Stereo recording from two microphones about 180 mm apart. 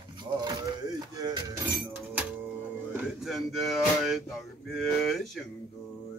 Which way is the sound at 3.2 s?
Centre (ahead or behind).